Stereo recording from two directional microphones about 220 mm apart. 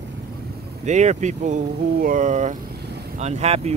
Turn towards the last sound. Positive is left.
turn(degrees=-30)  # may be behind; listen again after turning